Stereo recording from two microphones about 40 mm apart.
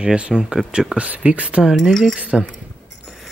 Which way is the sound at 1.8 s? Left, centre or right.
Centre.